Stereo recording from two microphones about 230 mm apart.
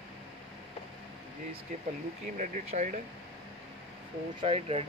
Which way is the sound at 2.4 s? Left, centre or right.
Right.